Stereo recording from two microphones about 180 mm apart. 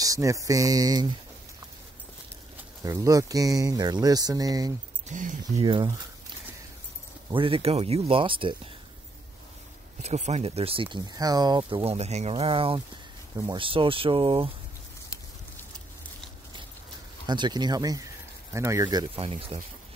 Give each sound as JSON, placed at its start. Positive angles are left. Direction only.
{"t": 0.0, "sound": "speech", "side_deg": -20}
{"t": 2.8, "sound": "speech", "side_deg": -20}
{"t": 5.0, "sound": "speech", "side_deg": -45}
{"t": 5.4, "sound": "speech", "side_deg": -25}
{"t": 7.2, "sound": "speech", "side_deg": -30}
{"t": 10.0, "sound": "speech", "side_deg": -40}
{"t": 17.3, "sound": "speech", "side_deg": -25}